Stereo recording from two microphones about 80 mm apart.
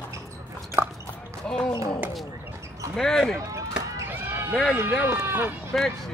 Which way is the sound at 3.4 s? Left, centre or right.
Right.